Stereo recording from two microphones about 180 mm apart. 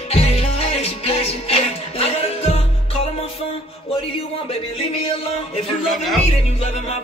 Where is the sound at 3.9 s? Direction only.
30° left (ahead or behind).